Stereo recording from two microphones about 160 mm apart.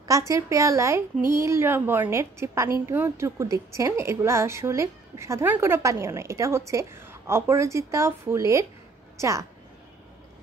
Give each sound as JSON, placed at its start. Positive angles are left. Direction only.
{"t": 0.3, "sound": "a woman's voice", "side_deg": -20}